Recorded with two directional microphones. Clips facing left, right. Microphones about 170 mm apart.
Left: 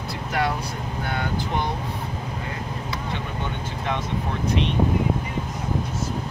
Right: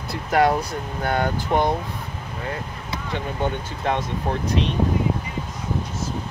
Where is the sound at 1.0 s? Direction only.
45° right (ahead or behind).